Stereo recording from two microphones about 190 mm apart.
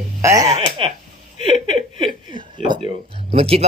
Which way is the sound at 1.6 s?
30° right (ahead or behind).